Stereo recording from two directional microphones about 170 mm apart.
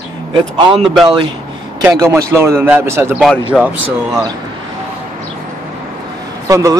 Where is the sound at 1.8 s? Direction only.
15° right (ahead or behind).